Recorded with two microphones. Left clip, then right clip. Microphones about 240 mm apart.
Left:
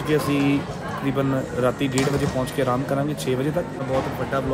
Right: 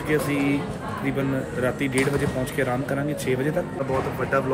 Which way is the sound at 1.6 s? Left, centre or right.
Centre.